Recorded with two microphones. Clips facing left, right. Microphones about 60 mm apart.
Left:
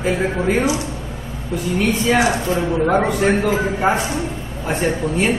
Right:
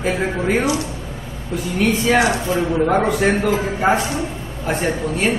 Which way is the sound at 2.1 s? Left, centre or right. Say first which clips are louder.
Even; centre.